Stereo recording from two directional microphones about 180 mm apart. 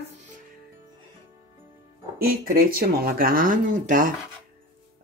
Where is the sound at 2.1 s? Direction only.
55° right (ahead or behind).